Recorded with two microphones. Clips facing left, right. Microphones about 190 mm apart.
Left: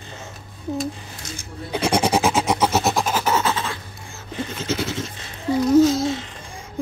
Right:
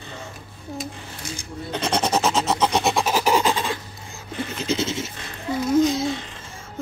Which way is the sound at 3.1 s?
10° right (ahead or behind).